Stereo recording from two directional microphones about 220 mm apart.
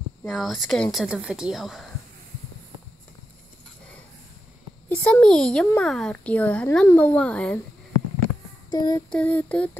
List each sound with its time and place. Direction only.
0.3 s a child's voice: centre (ahead or behind)
4.8 s a child's voice: 5° left (ahead or behind)
8.6 s child singing: 15° left (ahead or behind)
9.1 s a sound: 5° left (ahead or behind)